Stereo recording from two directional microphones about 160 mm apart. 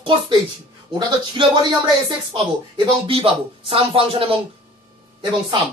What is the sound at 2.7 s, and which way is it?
Speech, 35° right (ahead or behind).